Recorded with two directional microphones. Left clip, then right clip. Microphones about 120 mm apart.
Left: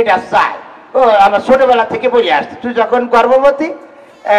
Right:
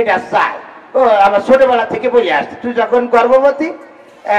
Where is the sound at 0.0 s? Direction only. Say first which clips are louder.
Left 2 dB; 35° left (ahead or behind).